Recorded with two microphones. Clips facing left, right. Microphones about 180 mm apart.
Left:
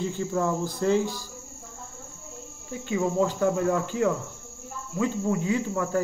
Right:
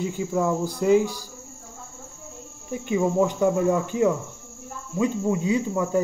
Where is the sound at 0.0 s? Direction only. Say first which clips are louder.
Right 2 dB; 10° right (ahead or behind).